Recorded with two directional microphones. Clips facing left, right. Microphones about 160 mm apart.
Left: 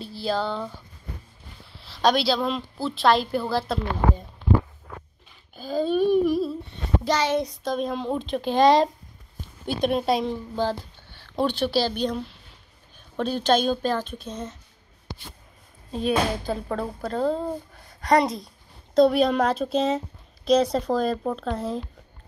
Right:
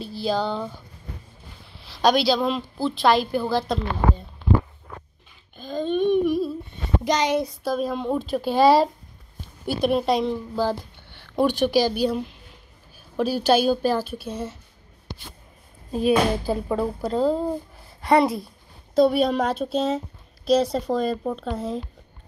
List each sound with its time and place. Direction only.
0.3 s a woman's voice: centre (ahead or behind)
1.8 s a woman's voice: centre (ahead or behind)
5.6 s speech: 10° left (ahead or behind)
7.1 s a woman's voice: 15° right (ahead or behind)
7.3 s a woman's voice: 5° right (ahead or behind)
10.6 s a woman's voice: 10° right (ahead or behind)
15.9 s a woman's voice: 5° right (ahead or behind)
18.9 s a woman's voice: centre (ahead or behind)